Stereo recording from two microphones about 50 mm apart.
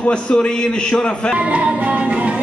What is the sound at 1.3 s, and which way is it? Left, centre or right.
Music, right.